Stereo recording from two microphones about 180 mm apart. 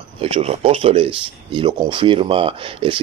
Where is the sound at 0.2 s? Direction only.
35° right (ahead or behind).